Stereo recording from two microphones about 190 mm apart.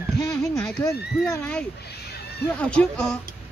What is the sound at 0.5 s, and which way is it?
Speech, 15° left (ahead or behind).